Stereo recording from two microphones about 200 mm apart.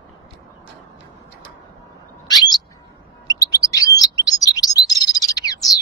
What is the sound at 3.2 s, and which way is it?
Chirp, 15° left (ahead or behind).